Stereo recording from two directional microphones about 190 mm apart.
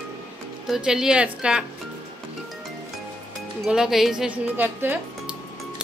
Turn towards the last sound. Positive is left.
turn(degrees=-10)  # may be behind; listen again after turning